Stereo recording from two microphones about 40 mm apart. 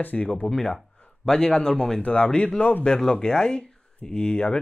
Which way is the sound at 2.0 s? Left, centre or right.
Left.